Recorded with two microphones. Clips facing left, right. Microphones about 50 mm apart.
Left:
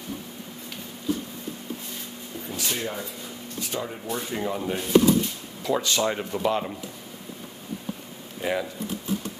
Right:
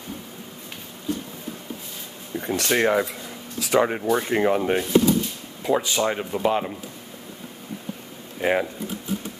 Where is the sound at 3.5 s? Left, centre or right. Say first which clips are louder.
Right 12 dB; right.